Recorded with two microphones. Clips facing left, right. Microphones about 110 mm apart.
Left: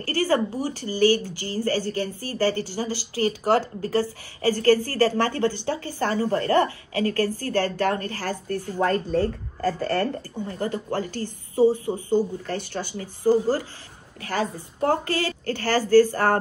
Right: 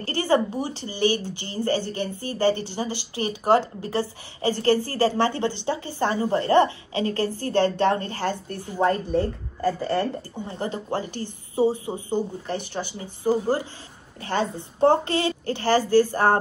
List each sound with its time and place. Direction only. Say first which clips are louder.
0.0 s a woman's voice: right 1 dB; 20° right (ahead or behind)